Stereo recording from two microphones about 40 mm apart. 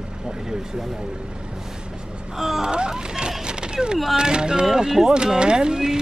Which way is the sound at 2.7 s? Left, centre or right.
Right.